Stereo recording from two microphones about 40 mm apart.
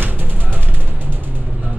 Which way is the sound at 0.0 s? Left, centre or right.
Right.